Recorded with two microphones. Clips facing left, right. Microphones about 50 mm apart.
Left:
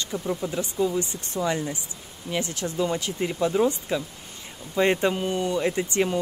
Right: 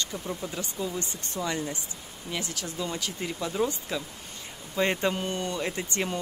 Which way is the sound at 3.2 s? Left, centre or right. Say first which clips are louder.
Left 7 dB; centre.